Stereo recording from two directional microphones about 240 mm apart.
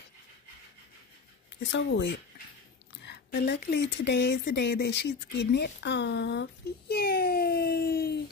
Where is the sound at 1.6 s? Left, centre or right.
Left.